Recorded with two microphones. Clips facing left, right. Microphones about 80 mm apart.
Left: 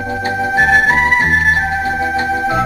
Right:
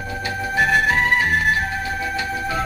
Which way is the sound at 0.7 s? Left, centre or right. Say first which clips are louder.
Left 5 dB; left.